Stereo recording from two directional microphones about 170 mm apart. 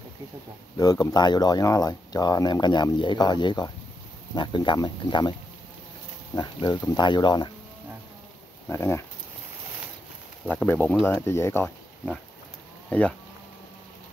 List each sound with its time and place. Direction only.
0.7 s speech: 20° left (ahead or behind)
6.3 s speech: 25° left (ahead or behind)
8.6 s speech: 15° left (ahead or behind)
10.4 s speech: 5° left (ahead or behind)